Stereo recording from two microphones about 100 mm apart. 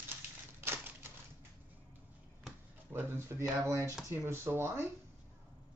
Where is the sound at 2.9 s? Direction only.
25° right (ahead or behind).